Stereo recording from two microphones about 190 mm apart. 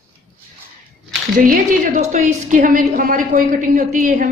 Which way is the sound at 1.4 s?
45° right (ahead or behind).